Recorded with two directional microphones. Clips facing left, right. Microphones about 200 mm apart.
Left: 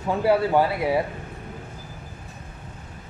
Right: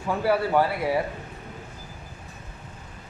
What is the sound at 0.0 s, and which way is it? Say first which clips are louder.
Speech: left 3 dB; 20° left (ahead or behind).